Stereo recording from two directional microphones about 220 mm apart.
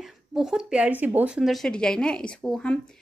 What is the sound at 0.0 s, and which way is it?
Speech, centre (ahead or behind).